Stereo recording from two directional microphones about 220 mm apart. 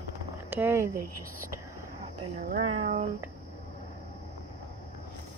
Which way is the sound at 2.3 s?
35° right (ahead or behind).